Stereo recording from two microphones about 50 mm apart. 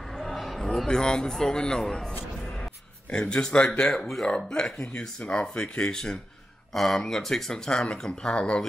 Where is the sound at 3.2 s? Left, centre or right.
Left.